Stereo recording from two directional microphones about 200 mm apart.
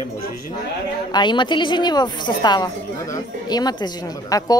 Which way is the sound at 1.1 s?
20° left (ahead or behind).